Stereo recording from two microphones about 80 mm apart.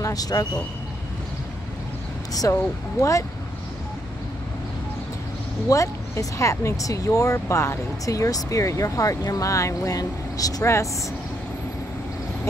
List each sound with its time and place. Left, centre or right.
0.0 s speech: left
2.5 s speech: left
5.7 s speech: left
10.6 s speech: left